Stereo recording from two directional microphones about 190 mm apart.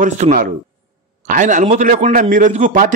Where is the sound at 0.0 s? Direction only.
45° right (ahead or behind).